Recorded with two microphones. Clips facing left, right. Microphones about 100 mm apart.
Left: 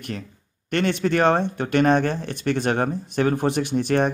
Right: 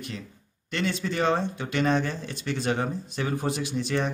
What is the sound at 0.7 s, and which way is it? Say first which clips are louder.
Speech: left 7 dB; 60° left (ahead or behind).